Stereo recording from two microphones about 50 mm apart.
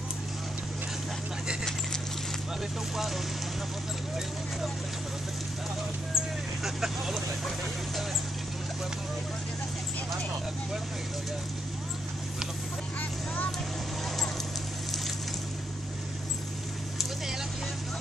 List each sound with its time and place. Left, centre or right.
1.6 s dog: centre
6.1 s vehicle: centre